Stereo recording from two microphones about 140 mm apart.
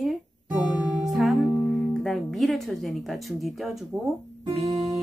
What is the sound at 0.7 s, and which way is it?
Music, centre (ahead or behind).